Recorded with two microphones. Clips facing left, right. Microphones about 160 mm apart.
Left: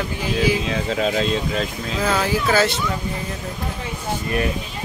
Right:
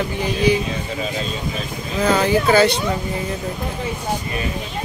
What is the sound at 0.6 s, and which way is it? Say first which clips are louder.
Speech: left 4 dB; 90° left.